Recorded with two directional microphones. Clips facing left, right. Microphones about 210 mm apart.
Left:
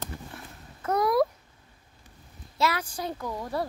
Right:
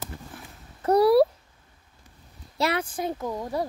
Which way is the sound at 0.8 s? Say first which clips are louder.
Right 7 dB; 35° right (ahead or behind).